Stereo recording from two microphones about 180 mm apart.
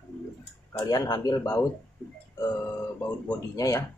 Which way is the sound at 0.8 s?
20° left (ahead or behind).